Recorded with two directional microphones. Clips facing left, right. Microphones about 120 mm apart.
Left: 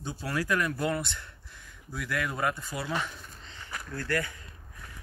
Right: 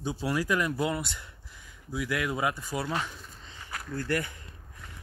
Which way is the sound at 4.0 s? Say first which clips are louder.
Right 1 dB; 15° right (ahead or behind).